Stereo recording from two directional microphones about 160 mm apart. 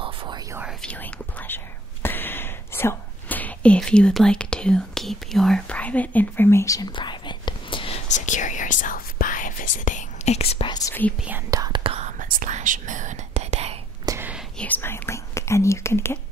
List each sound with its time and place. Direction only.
0.0 s whispering: 30° right (ahead or behind)
0.7 s speech: 10° left (ahead or behind)
2.0 s whispering: 15° left (ahead or behind); by 8.0 s 35° left (ahead or behind)
8.1 s whispering: 50° left (ahead or behind)
10.7 s speech: 20° left (ahead or behind)
11.5 s speech: 25° right (ahead or behind)
11.8 s whispering: 40° right (ahead or behind)
12.2 s whispering: 55° right (ahead or behind)
14.0 s whispering: 15° right (ahead or behind)
14.6 s speech: 10° left (ahead or behind)